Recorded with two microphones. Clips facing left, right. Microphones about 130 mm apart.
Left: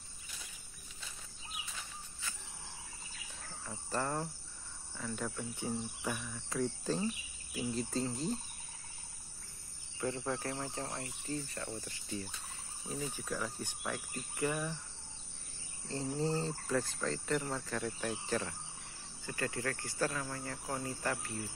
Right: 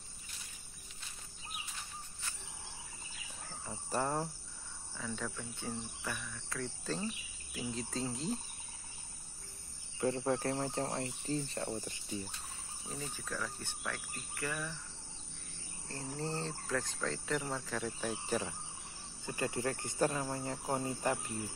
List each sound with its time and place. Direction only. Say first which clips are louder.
3.6 s cricket: right 1 dB; 15° right (ahead or behind)
4.9 s speech: left 1 dB; 5° left (ahead or behind)
7.5 s speech: left 3 dB; centre (ahead or behind)
9.9 s speech: right 4 dB; 35° right (ahead or behind)
12.8 s speech: left 4 dB; centre (ahead or behind)
13.1 s speech: left 2 dB; 10° left (ahead or behind)
15.9 s speech: left 5 dB; 20° left (ahead or behind)
16.3 s speech: left 3 dB; 10° left (ahead or behind); by 21.3 s 20° right (ahead or behind)